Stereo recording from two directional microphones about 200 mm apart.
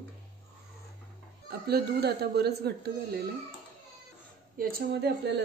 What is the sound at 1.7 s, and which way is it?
A man's voice, 55° right (ahead or behind).